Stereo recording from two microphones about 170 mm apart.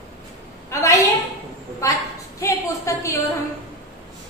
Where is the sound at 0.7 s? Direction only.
15° left (ahead or behind).